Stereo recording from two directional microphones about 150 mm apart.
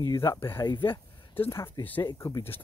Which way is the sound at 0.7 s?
30° left (ahead or behind).